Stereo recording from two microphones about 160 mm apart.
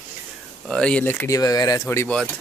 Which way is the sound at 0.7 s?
5° left (ahead or behind).